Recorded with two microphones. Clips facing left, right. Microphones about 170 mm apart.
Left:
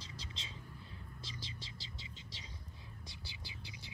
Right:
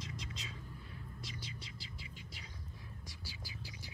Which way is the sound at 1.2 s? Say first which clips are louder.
Right 1 dB; 25° left (ahead or behind).